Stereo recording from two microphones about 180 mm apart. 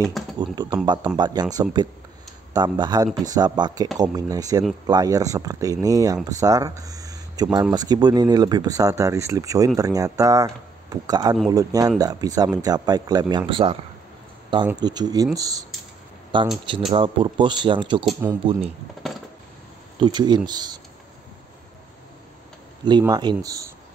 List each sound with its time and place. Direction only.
0.4 s speech: 25° right (ahead or behind)
14.8 s speech: 25° right (ahead or behind)
20.0 s speech: 25° right (ahead or behind)
22.8 s speech: 25° right (ahead or behind)